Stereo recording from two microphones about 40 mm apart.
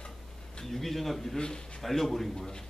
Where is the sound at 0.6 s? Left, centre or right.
Centre.